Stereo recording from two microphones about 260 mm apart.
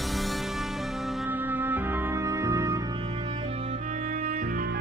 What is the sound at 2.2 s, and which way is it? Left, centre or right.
Music, centre.